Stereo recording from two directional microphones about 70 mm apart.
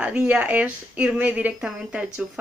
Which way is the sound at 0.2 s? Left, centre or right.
Centre.